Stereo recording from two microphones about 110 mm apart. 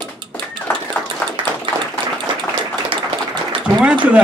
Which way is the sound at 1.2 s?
15° left (ahead or behind).